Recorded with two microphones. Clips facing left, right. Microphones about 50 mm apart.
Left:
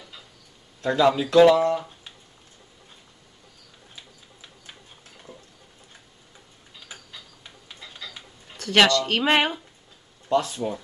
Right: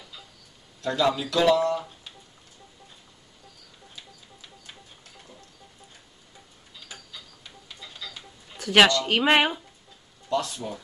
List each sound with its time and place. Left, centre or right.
0.8 s a man's voice: centre
1.5 s speech: centre
3.9 s a sound: centre
8.5 s speech: centre
10.6 s speech: left